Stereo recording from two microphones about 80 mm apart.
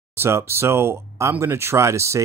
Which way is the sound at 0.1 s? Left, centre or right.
Right.